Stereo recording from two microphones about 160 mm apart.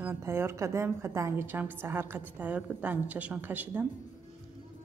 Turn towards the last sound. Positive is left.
turn(degrees=-10)  # may be behind; listen again after turning